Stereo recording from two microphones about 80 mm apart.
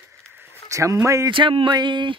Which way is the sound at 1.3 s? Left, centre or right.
Right.